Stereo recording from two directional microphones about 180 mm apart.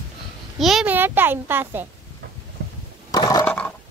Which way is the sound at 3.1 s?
20° left (ahead or behind).